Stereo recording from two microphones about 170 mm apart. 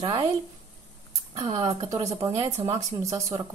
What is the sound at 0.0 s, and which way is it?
Speech, 25° right (ahead or behind).